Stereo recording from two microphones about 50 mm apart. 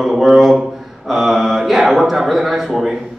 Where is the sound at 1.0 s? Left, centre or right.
Centre.